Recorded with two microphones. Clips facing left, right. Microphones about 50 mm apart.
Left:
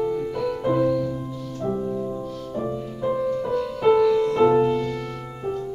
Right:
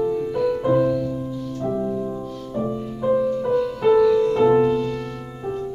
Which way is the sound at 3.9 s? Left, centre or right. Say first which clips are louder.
Right 2 dB; centre.